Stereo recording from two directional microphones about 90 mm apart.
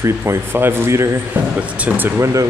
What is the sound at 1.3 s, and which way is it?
Speech, 20° right (ahead or behind).